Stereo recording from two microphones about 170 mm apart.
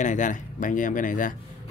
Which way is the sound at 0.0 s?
45° left (ahead or behind).